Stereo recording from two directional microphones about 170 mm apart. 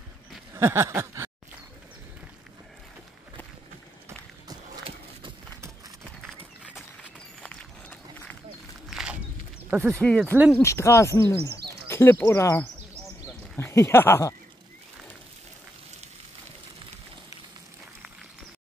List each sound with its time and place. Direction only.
0.6 s a sound: 15° right (ahead or behind)
7.0 s run: 10° left (ahead or behind)
9.7 s speech: 5° right (ahead or behind)
9.9 s speech: 5° left (ahead or behind)
10.3 s a sound: 10° right (ahead or behind)
10.6 s speech: 15° left (ahead or behind)